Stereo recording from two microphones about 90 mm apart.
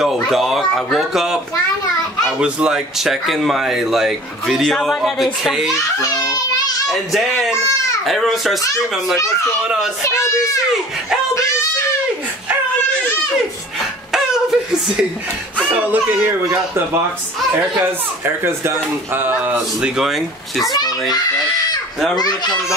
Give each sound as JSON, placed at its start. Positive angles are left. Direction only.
{"t": 0.0, "sound": "speech", "side_deg": -5}
{"t": 5.9, "sound": "children playing", "side_deg": 40}
{"t": 6.9, "sound": "speech", "side_deg": 0}
{"t": 10.0, "sound": "speech", "side_deg": 35}
{"t": 14.1, "sound": "chuckle", "side_deg": -5}
{"t": 15.7, "sound": "speech", "side_deg": -20}
{"t": 17.8, "sound": "speech", "side_deg": -25}
{"t": 22.1, "sound": "a child's voice", "side_deg": 50}